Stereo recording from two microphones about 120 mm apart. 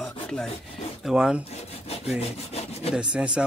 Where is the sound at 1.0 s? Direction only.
5° right (ahead or behind).